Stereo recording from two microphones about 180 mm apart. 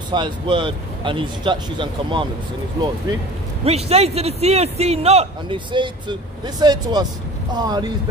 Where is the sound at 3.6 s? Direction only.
35° right (ahead or behind).